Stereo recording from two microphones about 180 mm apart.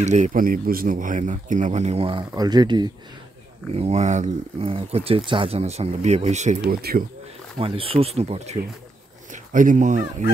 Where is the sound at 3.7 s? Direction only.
35° right (ahead or behind).